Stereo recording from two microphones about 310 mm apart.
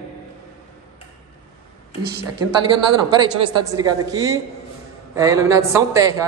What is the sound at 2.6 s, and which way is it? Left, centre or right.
Speech, centre.